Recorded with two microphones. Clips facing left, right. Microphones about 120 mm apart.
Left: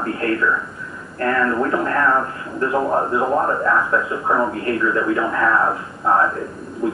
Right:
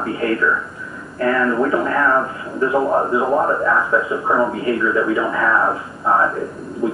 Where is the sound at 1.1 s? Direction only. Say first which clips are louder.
Right 2 dB; 5° right (ahead or behind).